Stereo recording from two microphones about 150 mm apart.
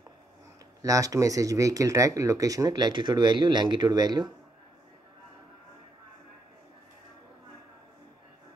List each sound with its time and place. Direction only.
0.8 s speech: 20° right (ahead or behind)